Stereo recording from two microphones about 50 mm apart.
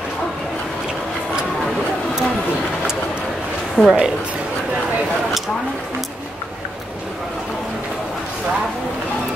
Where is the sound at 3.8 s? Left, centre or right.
Left.